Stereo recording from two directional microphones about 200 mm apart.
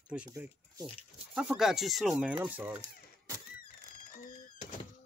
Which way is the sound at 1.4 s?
5° right (ahead or behind).